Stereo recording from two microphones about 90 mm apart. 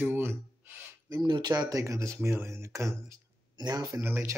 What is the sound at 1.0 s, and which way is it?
Speech, 55° right (ahead or behind).